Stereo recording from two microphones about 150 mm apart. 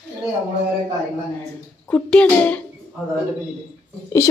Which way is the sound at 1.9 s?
10° left (ahead or behind).